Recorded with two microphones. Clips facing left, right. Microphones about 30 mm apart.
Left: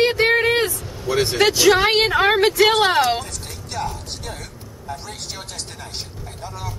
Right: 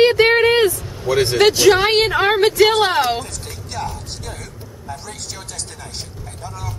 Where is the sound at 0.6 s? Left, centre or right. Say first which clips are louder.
Right 6 dB; centre.